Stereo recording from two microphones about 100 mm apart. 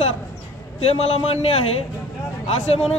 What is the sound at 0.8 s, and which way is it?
Speech, 80° left.